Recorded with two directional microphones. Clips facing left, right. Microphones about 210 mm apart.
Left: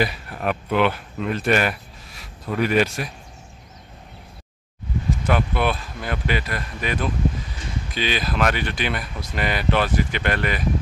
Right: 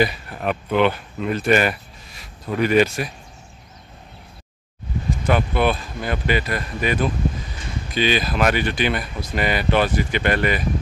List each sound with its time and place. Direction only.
0.0 s speech: centre (ahead or behind)
5.2 s speech: centre (ahead or behind)